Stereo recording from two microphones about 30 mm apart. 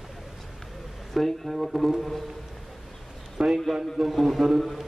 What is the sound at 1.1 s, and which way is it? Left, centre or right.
Speech, centre.